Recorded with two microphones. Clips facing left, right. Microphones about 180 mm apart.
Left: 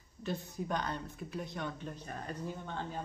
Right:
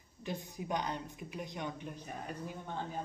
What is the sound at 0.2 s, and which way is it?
Speech, 15° right (ahead or behind).